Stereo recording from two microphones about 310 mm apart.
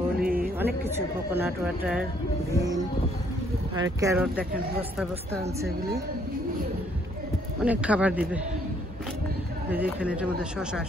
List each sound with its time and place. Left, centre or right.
0.2 s a sound: right
0.6 s speech: centre
3.7 s speech: centre
7.6 s speech: centre
9.9 s speech: centre